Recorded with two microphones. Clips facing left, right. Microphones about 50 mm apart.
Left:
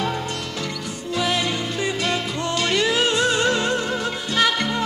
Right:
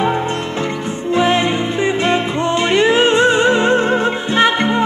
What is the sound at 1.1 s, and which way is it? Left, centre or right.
Music, right.